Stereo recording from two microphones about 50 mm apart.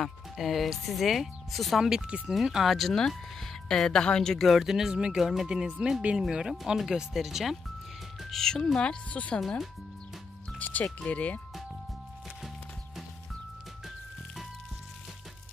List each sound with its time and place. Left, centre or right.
0.0 s speech: centre
1.9 s a woman's voice: centre
4.5 s speech: centre
5.5 s speech: centre
8.2 s speech: centre
8.7 s speech: left
10.6 s music: left
11.1 s speech: left